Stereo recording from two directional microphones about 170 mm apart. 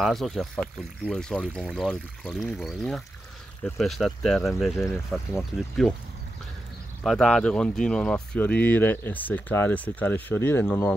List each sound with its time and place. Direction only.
0.0 s speech: centre (ahead or behind)
7.0 s speech: 5° left (ahead or behind)